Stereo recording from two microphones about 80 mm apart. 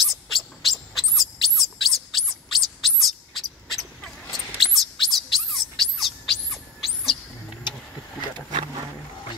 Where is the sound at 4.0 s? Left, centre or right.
Centre.